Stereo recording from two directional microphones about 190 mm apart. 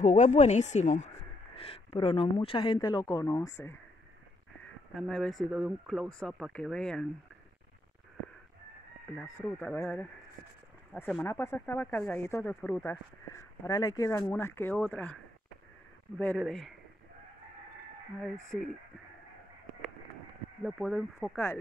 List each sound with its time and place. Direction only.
0.0 s speech: 40° left (ahead or behind); by 3.7 s 15° left (ahead or behind)
4.9 s speech: 5° left (ahead or behind)
9.2 s speech: 5° left (ahead or behind)
16.2 s speech: 5° left (ahead or behind)
18.2 s speech: centre (ahead or behind)
20.6 s speech: centre (ahead or behind)